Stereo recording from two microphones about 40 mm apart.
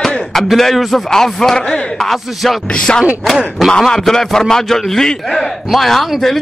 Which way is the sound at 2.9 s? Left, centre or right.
Left.